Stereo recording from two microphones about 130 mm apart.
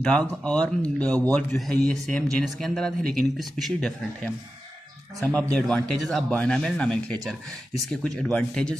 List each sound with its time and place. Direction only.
0.0 s speech: 5° left (ahead or behind)